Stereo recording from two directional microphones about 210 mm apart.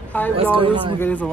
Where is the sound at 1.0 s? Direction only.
5° left (ahead or behind).